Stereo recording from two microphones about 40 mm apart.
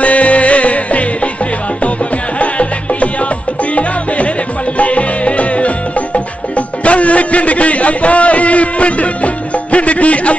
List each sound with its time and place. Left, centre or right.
0.0 s music: left
2.3 s music: left
4.7 s music: left